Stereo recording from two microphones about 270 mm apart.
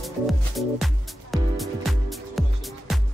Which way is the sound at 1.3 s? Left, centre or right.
Centre.